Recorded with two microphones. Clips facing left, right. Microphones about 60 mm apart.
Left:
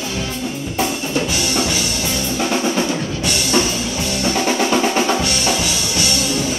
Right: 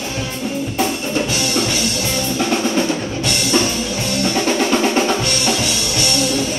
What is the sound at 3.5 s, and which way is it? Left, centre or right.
Music, centre.